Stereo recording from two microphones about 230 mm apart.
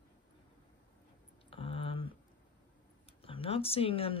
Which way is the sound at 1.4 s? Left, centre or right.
Left.